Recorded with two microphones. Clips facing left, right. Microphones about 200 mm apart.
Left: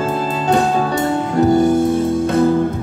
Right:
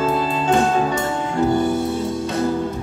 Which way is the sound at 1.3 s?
45° left (ahead or behind).